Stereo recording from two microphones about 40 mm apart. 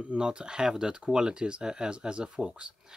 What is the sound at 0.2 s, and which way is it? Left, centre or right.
Speech, right.